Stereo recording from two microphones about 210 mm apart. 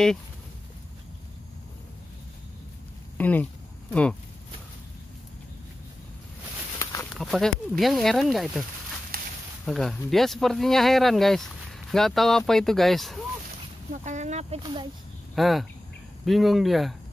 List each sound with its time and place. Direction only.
3.2 s speech: 10° left (ahead or behind)
6.8 s a sound: 15° left (ahead or behind)
7.2 s speech: centre (ahead or behind)
9.1 s a sound: 45° right (ahead or behind)
9.7 s speech: centre (ahead or behind)
14.0 s speech: 35° right (ahead or behind)
14.6 s speech: 20° right (ahead or behind)
15.3 s speech: centre (ahead or behind)